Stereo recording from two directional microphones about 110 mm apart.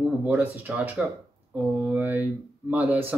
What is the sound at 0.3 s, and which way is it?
Speech, 15° right (ahead or behind).